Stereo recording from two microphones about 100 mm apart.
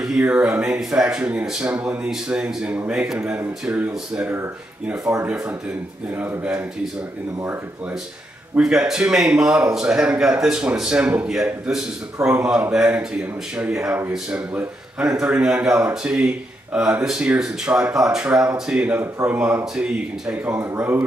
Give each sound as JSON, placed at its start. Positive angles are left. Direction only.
{"t": 0.2, "sound": "speech", "side_deg": -15}
{"t": 8.5, "sound": "speech", "side_deg": -5}
{"t": 12.2, "sound": "speech", "side_deg": -30}
{"t": 12.7, "sound": "speech", "side_deg": -10}
{"t": 20.4, "sound": "speech", "side_deg": -25}